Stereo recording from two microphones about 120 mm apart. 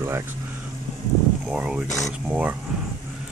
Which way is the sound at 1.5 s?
10° right (ahead or behind).